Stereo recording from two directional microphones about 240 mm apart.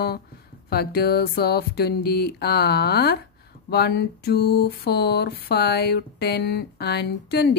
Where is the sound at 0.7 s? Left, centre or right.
Left.